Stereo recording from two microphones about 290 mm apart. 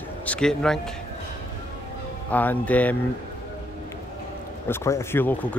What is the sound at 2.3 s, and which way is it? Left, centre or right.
Speech, centre.